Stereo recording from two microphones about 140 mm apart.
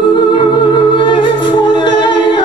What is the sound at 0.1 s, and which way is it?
Music, 35° left (ahead or behind).